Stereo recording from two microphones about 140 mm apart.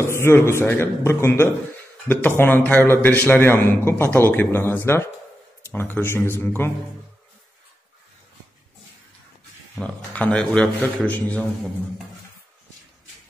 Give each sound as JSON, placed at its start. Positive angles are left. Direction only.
{"t": 0.0, "sound": "a man's voice", "side_deg": 20}
{"t": 9.8, "sound": "a man's voice", "side_deg": 10}